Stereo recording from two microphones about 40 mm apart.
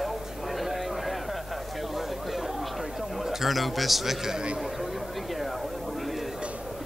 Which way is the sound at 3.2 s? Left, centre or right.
Centre.